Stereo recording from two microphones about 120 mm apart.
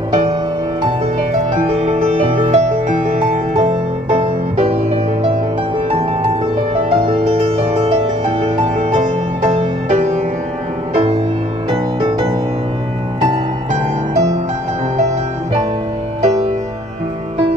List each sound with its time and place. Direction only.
0.1 s music: 55° right (ahead or behind)
1.4 s music: 60° right (ahead or behind)
2.5 s music: 90° right
4.2 s music: 60° right (ahead or behind)
6.7 s music: 45° right (ahead or behind)
10.9 s music: 55° right (ahead or behind)